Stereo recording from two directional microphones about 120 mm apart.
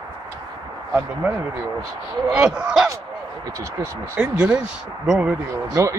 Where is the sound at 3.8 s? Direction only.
20° right (ahead or behind).